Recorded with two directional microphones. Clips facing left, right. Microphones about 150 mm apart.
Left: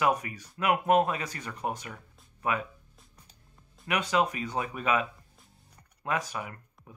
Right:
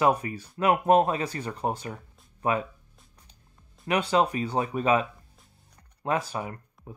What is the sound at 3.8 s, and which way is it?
Speech, 30° right (ahead or behind).